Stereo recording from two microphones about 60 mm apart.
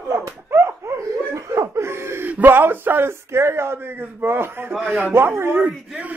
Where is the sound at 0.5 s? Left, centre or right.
Right.